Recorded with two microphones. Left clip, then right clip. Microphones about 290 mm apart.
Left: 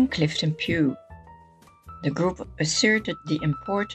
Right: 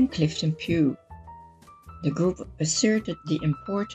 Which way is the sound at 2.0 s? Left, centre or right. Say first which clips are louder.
Left 1 dB; left.